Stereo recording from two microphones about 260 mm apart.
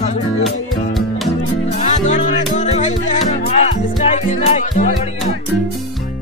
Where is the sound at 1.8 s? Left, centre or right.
Left.